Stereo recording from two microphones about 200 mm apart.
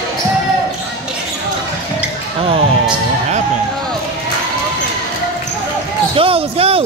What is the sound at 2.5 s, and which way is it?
Music, 30° right (ahead or behind).